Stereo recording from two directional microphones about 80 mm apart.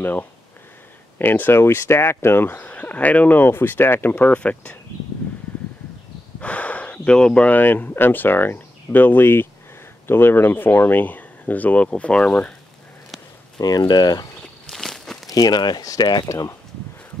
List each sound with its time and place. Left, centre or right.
0.0 s speech: left
6.4 s speech: centre
13.6 s speech: left
14.7 s walk: centre
15.2 s speech: left
16.3 s speech: left